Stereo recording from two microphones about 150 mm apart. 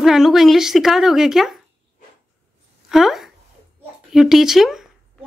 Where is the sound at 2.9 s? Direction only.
Centre (ahead or behind).